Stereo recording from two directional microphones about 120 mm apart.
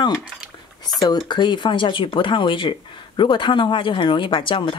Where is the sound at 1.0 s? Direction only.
35° left (ahead or behind).